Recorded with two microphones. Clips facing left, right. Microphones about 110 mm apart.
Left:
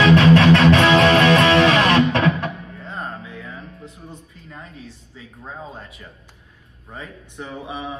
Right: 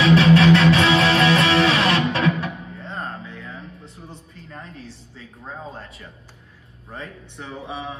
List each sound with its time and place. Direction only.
0.0 s music: 65° left (ahead or behind)
6.9 s speech: centre (ahead or behind)